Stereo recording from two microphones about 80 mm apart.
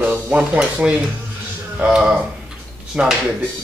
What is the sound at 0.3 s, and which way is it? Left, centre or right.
A man's voice, centre.